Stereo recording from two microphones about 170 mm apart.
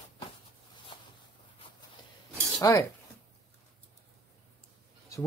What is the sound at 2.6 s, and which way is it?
Speech, 15° left (ahead or behind).